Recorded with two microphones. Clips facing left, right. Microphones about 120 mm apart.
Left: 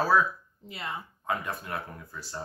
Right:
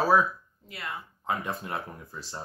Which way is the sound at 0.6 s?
25° left (ahead or behind).